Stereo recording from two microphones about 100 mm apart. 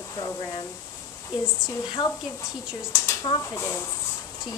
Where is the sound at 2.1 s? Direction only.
30° left (ahead or behind).